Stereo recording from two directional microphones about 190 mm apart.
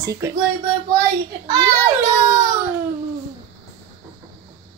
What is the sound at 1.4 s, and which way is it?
A child's voice, 20° right (ahead or behind).